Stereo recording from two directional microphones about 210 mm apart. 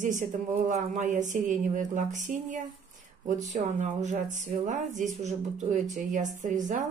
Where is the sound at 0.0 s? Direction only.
35° right (ahead or behind).